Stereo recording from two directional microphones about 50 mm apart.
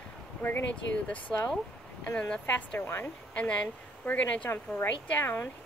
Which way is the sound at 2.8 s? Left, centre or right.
Left.